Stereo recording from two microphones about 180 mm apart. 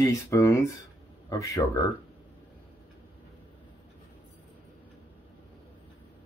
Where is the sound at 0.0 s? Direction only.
15° left (ahead or behind).